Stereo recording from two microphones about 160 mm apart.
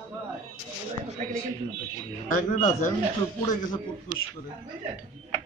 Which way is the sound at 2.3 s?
50° left (ahead or behind).